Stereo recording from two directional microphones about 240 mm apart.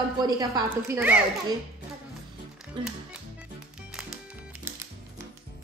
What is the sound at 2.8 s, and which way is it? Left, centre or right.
Speech, right.